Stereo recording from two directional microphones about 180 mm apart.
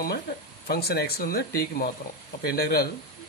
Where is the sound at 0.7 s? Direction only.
60° left (ahead or behind).